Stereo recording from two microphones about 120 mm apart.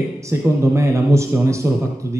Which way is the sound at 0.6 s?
25° right (ahead or behind).